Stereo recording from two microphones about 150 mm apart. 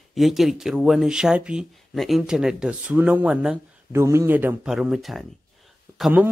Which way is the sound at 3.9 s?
20° right (ahead or behind).